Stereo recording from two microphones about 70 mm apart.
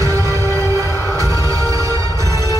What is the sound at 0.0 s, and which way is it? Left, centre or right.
Music, right.